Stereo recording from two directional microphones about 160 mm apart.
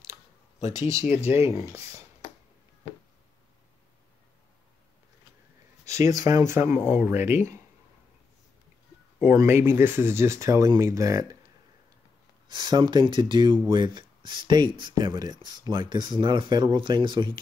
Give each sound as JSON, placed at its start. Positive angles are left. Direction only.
{"t": 0.6, "sound": "speech", "side_deg": 45}
{"t": 1.5, "sound": "speech", "side_deg": -20}
{"t": 2.2, "sound": "a sound", "side_deg": 15}
{"t": 5.9, "sound": "speech", "side_deg": -20}
{"t": 9.2, "sound": "speech", "side_deg": -15}
{"t": 12.4, "sound": "speech", "side_deg": -30}